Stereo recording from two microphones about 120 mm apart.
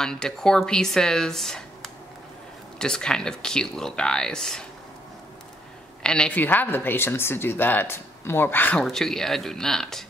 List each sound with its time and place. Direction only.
0.0 s speech: 5° left (ahead or behind)
6.0 s speech: 5° left (ahead or behind)
8.8 s speech: 5° left (ahead or behind)